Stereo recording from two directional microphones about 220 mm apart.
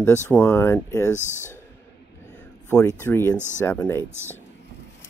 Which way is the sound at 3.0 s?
10° left (ahead or behind).